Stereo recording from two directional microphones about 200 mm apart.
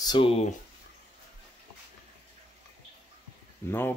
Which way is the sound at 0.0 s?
25° left (ahead or behind).